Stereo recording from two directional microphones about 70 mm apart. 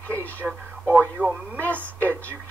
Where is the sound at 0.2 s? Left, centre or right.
Left.